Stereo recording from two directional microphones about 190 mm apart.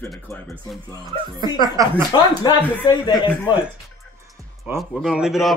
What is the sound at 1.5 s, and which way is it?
Speech, 20° right (ahead or behind).